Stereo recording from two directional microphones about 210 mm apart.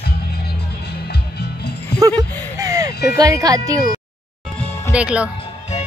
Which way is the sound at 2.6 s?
15° right (ahead or behind).